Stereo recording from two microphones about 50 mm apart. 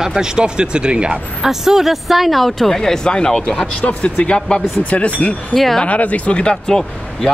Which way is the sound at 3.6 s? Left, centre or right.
Left.